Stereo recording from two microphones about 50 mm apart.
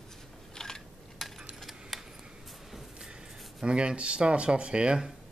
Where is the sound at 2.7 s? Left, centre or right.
Centre.